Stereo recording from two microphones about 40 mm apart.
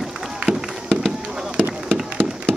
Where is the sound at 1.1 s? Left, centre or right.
Centre.